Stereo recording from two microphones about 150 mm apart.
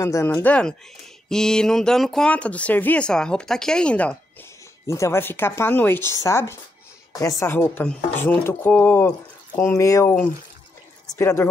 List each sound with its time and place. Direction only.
0.0 s speech: 20° left (ahead or behind)
4.8 s speech: 20° left (ahead or behind)
11.1 s speech: 15° left (ahead or behind)